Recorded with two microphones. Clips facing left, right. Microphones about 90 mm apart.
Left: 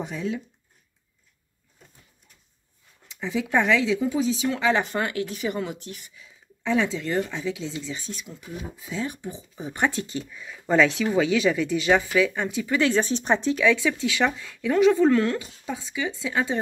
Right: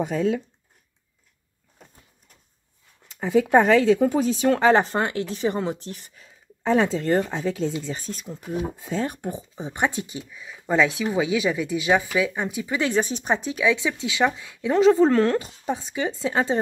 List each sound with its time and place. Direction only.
0.0 s speech: 55° right (ahead or behind)
3.1 s a sound: 45° right (ahead or behind)
3.5 s speech: 45° right (ahead or behind)
9.6 s speech: 20° right (ahead or behind)